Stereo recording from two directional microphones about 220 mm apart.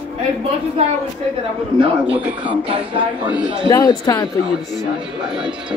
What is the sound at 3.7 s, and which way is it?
Speech, 15° left (ahead or behind).